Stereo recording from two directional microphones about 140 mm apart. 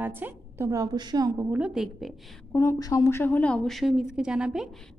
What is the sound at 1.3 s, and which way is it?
Speech, 10° right (ahead or behind).